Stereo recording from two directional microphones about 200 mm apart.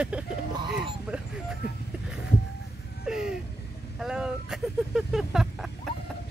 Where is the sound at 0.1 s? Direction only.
5° right (ahead or behind).